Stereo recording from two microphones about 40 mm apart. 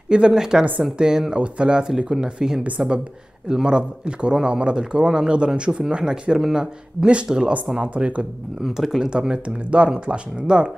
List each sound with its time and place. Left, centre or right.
0.1 s speech: right
8.6 s speech: centre
9.0 s speech: centre